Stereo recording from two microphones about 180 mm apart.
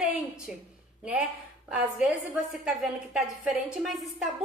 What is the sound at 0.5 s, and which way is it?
Speech, 5° right (ahead or behind).